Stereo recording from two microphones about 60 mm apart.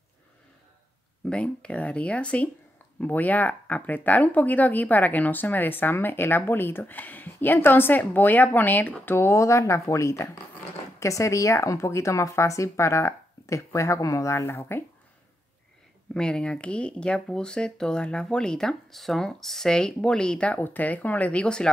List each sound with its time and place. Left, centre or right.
1.3 s speech: centre
9.0 s speech: left
9.4 s speech: left
16.1 s speech: centre